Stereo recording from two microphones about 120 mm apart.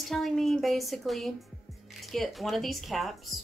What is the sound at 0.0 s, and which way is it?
Speech, centre (ahead or behind).